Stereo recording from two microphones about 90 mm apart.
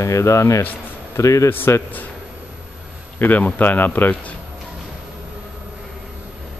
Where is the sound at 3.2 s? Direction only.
20° left (ahead or behind).